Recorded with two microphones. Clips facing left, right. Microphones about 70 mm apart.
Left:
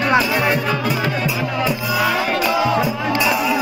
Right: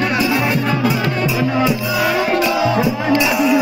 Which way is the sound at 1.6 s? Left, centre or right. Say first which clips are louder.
Right 2 dB; centre.